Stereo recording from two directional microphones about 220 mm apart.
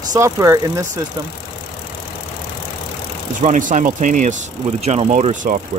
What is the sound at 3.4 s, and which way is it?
Speech, 35° right (ahead or behind).